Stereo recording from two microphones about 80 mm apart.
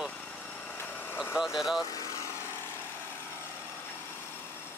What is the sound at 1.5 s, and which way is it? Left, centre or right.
Speech, centre.